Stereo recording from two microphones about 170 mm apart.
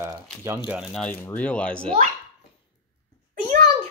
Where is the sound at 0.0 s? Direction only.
20° right (ahead or behind).